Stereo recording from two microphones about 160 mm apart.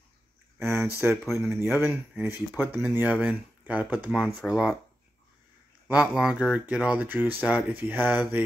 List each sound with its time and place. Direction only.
0.6 s speech: 15° right (ahead or behind)
1.1 s speech: centre (ahead or behind)
1.5 s speech: 15° right (ahead or behind)
5.9 s speech: 5° right (ahead or behind)